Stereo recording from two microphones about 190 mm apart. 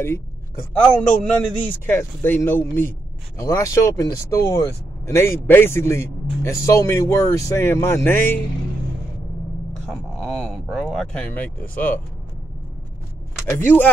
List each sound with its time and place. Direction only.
0.0 s a woman's voice: 15° left (ahead or behind)
9.8 s speech: 5° left (ahead or behind)
13.5 s a man's voice: 10° left (ahead or behind)